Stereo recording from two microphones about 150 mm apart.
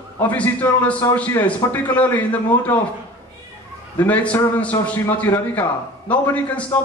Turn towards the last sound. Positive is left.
turn(degrees=10)  # may be behind; listen again after turning